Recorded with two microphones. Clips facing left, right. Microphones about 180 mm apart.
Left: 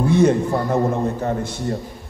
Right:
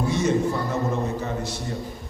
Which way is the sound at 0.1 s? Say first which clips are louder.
Left 7 dB; 55° left (ahead or behind).